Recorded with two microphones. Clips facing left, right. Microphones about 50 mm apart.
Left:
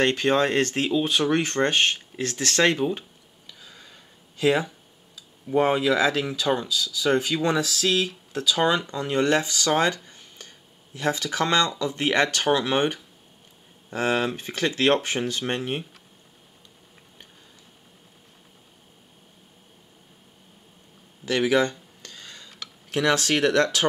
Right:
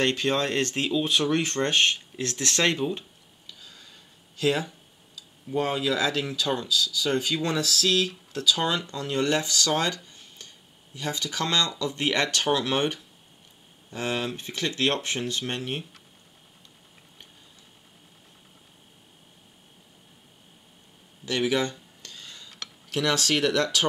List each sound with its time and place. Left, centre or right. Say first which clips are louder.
0.0 s speech: left 4 dB; left
13.8 s speech: left 5 dB; left
21.3 s a sound: left 4 dB; left
22.8 s speech: left 3 dB; left